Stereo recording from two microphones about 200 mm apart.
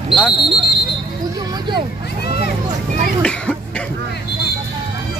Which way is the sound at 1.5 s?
20° right (ahead or behind).